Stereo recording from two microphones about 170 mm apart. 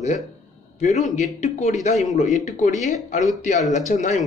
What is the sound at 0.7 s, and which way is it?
Speech, 40° left (ahead or behind).